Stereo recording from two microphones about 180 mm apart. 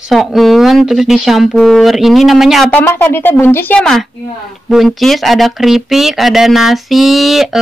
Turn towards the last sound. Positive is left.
turn(degrees=0)  # may be behind; listen again after turning